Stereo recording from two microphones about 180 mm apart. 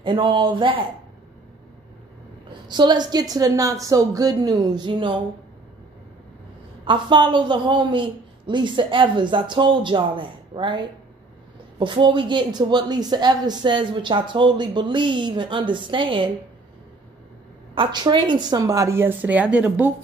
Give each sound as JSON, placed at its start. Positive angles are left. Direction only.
{"t": 0.0, "sound": "speech", "side_deg": -25}
{"t": 2.7, "sound": "speech", "side_deg": -25}
{"t": 6.8, "sound": "speech", "side_deg": -25}
{"t": 17.7, "sound": "speech", "side_deg": -25}